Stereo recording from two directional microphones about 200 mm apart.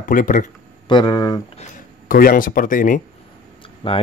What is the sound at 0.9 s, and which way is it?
Speech, 20° left (ahead or behind).